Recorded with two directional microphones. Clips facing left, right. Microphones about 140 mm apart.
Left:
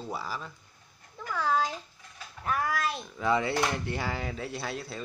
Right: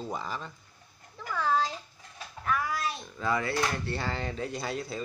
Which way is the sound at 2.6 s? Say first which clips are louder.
Left 2 dB; 60° left (ahead or behind).